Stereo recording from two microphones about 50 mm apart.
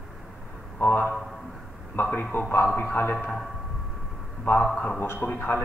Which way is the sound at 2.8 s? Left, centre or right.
Left.